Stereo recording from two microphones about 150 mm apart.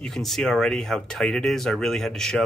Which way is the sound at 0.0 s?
Centre (ahead or behind).